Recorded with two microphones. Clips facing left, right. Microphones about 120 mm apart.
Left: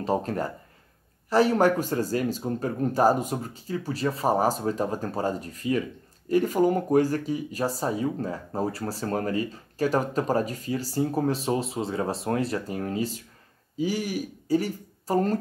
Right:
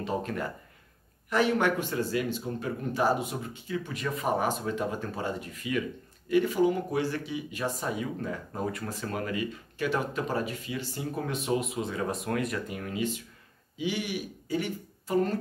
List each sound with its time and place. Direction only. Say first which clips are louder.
0.0 s speech: left 5 dB; 40° left (ahead or behind)